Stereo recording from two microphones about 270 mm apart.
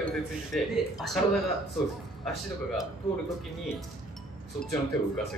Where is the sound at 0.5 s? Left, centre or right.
Centre.